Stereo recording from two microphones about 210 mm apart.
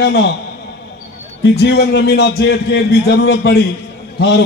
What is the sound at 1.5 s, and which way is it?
A man's voice, 55° left (ahead or behind).